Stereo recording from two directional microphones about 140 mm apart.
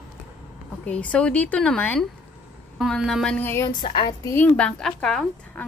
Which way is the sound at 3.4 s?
20° left (ahead or behind).